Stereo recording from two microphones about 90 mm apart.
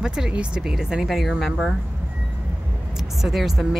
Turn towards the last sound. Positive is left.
turn(degrees=-5)  # may be behind; listen again after turning